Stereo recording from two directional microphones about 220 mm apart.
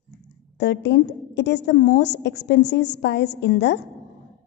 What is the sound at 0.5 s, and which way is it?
A woman's voice, 50° left (ahead or behind).